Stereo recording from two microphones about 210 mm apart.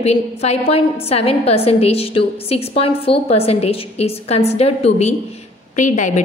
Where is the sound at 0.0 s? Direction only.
30° left (ahead or behind).